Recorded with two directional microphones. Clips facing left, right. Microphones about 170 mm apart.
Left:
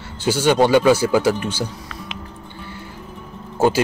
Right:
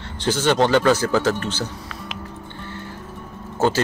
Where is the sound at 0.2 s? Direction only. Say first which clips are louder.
Left 3 dB; 10° left (ahead or behind).